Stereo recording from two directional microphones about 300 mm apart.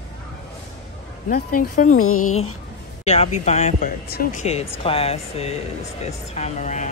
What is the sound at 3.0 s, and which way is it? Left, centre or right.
Speech, left.